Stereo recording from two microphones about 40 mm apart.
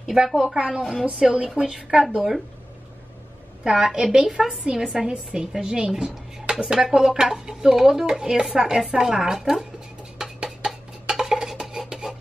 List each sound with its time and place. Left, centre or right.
0.1 s speech: centre
0.6 s a woman's voice: right
2.1 s speech: centre
3.6 s a woman's voice: centre
8.8 s a woman's voice: right
9.1 s speech: centre
10.1 s a sound: centre